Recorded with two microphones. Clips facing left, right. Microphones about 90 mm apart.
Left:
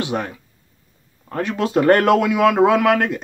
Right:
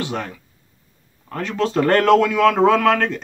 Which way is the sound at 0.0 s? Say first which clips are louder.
Left 3 dB; 20° left (ahead or behind).